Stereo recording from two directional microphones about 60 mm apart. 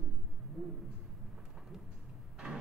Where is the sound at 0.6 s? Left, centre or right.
Centre.